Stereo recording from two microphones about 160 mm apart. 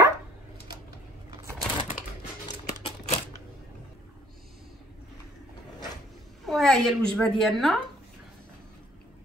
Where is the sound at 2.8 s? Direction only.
35° left (ahead or behind).